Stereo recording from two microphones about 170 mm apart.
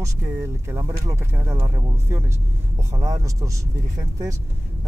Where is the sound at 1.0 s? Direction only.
20° right (ahead or behind).